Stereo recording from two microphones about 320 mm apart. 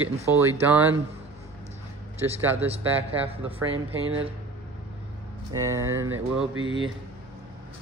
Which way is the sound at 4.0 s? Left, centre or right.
Right.